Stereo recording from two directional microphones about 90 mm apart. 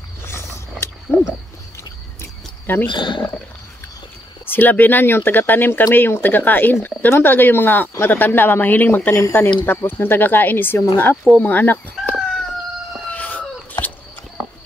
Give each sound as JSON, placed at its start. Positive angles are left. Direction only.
{"t": 0.2, "sound": "wild animals", "side_deg": 30}
{"t": 2.6, "sound": "speech", "side_deg": 20}
{"t": 2.9, "sound": "speech", "side_deg": 60}
{"t": 4.5, "sound": "speech", "side_deg": 20}
{"t": 9.1, "sound": "speech", "side_deg": 35}
{"t": 9.7, "sound": "speech", "side_deg": 20}
{"t": 13.1, "sound": "chicken", "side_deg": 20}